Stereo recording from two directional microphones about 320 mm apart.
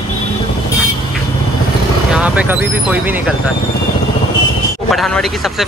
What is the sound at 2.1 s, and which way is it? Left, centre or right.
Speech, centre.